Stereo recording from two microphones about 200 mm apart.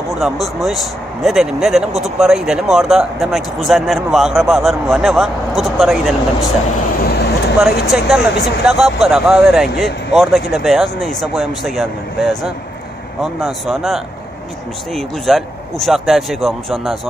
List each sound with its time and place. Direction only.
0.1 s speech: centre (ahead or behind)
7.1 s vehicle: 55° left (ahead or behind)
7.8 s speech: centre (ahead or behind)